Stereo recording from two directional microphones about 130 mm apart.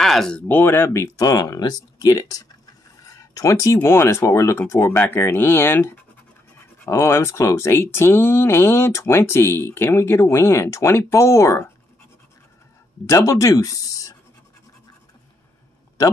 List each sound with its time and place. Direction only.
0.0 s speech: 5° left (ahead or behind)
6.9 s speech: 20° left (ahead or behind)
13.1 s speech: 25° left (ahead or behind)